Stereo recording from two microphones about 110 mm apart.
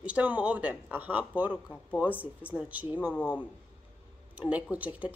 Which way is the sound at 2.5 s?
15° right (ahead or behind).